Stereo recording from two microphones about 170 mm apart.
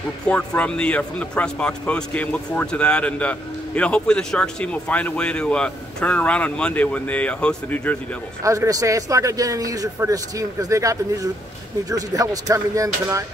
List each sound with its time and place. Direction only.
0.2 s speech: 5° left (ahead or behind)
8.5 s a man's voice: 20° right (ahead or behind)